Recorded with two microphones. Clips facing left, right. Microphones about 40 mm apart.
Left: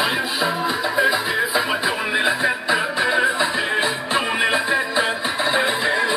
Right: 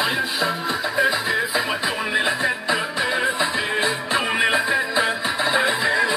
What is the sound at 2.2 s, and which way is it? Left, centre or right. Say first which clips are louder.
Music: left 2 dB; left.